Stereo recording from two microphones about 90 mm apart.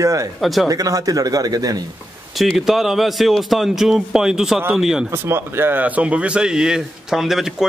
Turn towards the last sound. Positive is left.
turn(degrees=-5)  # may be behind; listen again after turning